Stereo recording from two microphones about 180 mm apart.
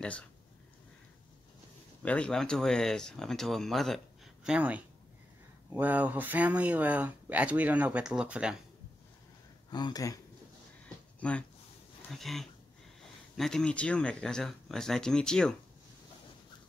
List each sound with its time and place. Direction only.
2.0 s speech: 5° left (ahead or behind)
9.7 s speech: 25° left (ahead or behind)
11.1 s speech: 5° left (ahead or behind)